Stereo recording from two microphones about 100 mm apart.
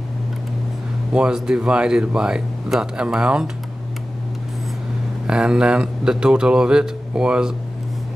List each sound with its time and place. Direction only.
1.1 s speech: 5° right (ahead or behind)
5.2 s speech: 10° right (ahead or behind)